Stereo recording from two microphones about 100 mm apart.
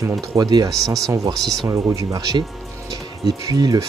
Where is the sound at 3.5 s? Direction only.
40° right (ahead or behind).